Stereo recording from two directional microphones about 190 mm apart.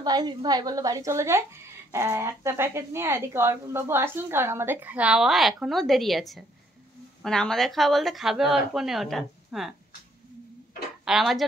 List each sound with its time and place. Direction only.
0.0 s a woman's voice: 20° right (ahead or behind); by 9.7 s centre (ahead or behind)
11.1 s speech: centre (ahead or behind)